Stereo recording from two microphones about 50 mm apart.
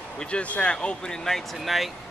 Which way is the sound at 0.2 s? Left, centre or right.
Left.